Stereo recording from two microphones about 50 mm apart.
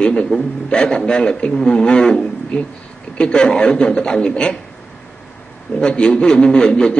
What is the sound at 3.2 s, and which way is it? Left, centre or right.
A man's voice, centre.